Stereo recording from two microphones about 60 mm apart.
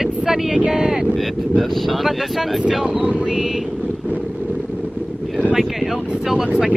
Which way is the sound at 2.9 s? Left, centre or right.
Right.